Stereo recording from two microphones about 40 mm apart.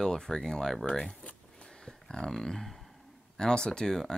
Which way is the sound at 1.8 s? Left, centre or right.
Centre.